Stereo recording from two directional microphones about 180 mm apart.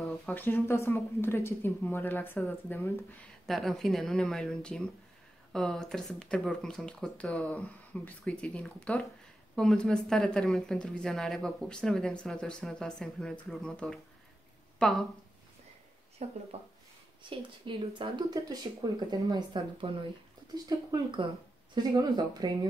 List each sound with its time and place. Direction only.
0.0 s speech: 10° left (ahead or behind)
3.4 s a woman's voice: centre (ahead or behind)
16.2 s speech: 40° right (ahead or behind)
17.2 s speech: 25° right (ahead or behind)